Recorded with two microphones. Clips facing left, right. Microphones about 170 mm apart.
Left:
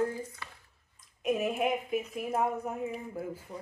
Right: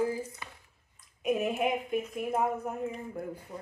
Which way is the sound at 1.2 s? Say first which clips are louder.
Right 1 dB; centre (ahead or behind).